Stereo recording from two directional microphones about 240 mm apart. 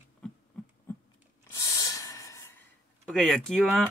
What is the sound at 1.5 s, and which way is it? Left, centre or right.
Gasp, centre.